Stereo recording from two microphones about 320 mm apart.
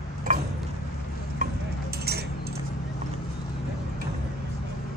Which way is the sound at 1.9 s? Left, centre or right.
Right.